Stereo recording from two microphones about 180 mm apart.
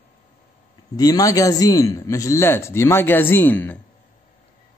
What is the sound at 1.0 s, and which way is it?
Speech, 20° left (ahead or behind).